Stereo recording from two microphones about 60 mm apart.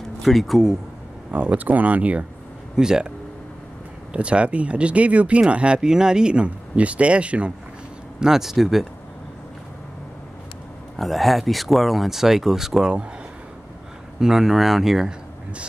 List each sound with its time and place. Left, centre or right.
0.2 s speech: centre
1.3 s speech: right
2.7 s speech: centre
4.1 s speech: centre
8.2 s speech: centre
11.0 s speech: centre
14.2 s speech: centre